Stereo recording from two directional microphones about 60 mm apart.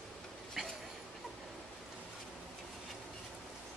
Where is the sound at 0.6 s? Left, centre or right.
Centre.